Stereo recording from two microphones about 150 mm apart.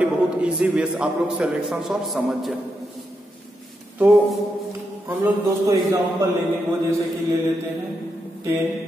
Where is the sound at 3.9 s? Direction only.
10° right (ahead or behind).